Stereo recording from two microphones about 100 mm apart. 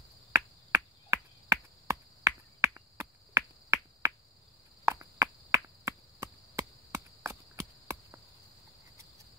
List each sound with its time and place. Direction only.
0.3 s finger snapping: 25° right (ahead or behind)
4.8 s cricket: 30° right (ahead or behind)